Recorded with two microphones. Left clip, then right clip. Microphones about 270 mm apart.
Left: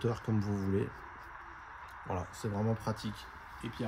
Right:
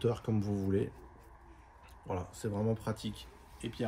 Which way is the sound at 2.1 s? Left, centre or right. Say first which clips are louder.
Even; centre.